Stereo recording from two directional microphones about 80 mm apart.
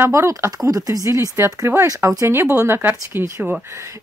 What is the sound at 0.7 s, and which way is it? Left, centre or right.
Speech, right.